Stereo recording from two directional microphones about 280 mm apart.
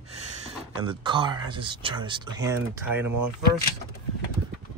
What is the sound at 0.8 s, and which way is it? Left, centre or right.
Speech, centre.